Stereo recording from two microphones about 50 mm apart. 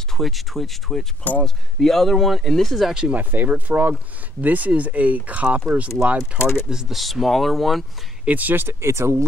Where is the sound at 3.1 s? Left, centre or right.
Right.